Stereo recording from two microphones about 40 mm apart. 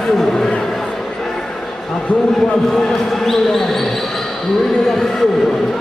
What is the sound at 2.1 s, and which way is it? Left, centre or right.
Speech, left.